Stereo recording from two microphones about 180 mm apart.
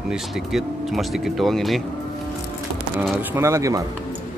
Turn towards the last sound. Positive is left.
turn(degrees=-15)  # may be behind; listen again after turning